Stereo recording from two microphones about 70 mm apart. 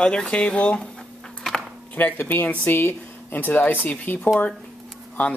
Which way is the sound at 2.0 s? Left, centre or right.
Left.